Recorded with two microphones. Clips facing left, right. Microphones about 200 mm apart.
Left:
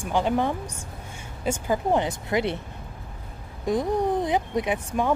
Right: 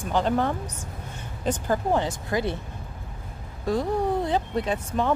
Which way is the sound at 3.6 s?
15° left (ahead or behind).